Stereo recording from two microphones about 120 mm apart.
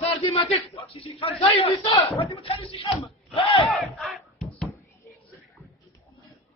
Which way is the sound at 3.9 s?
Centre (ahead or behind).